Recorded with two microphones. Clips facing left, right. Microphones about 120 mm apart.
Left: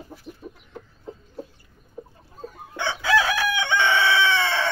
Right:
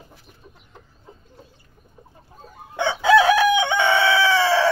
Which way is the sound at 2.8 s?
20° right (ahead or behind).